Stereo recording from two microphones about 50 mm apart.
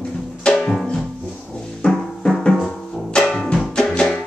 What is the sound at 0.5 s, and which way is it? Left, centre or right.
Music, centre.